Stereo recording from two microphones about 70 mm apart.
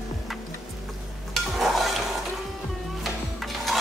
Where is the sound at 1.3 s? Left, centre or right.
Centre.